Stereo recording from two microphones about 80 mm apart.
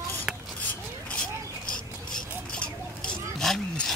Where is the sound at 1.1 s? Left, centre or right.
Centre.